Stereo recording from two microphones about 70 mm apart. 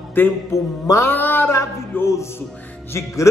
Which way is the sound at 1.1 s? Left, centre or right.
Left.